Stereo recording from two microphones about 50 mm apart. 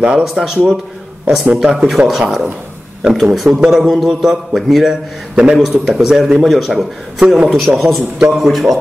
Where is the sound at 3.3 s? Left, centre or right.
Centre.